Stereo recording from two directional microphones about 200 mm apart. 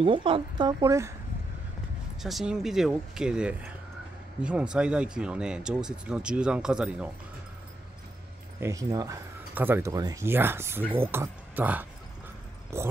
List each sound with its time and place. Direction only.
0.0 s speech: 25° right (ahead or behind)
2.2 s speech: centre (ahead or behind)
8.5 s speech: 15° right (ahead or behind)